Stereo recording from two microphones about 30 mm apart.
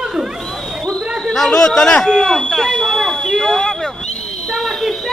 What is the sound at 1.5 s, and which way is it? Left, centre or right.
Speech, left.